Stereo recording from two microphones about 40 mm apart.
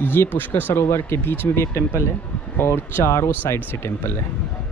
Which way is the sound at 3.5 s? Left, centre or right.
Left.